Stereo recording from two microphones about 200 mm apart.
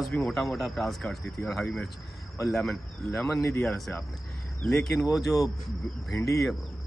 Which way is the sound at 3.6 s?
Centre (ahead or behind).